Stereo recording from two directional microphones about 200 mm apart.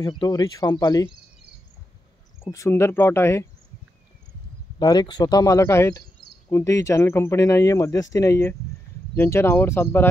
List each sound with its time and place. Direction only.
0.2 s speech: 20° left (ahead or behind)
2.5 s speech: 15° left (ahead or behind)
4.7 s a man's voice: 20° left (ahead or behind)